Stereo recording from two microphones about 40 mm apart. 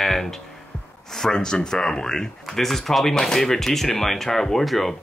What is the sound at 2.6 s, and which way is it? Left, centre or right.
Speech, centre.